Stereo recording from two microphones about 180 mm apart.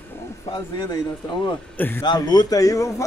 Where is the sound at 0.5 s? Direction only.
25° left (ahead or behind).